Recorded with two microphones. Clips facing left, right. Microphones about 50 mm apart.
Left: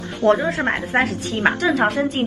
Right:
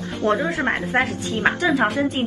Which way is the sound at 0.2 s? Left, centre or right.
Left.